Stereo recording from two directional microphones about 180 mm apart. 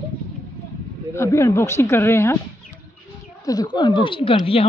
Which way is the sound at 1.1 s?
15° left (ahead or behind).